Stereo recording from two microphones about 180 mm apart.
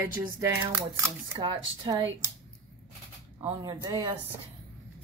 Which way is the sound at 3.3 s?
20° right (ahead or behind).